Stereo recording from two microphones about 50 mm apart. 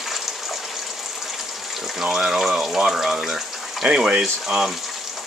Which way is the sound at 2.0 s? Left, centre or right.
Centre.